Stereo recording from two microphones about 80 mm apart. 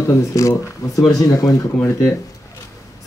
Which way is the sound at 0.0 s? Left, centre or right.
Left.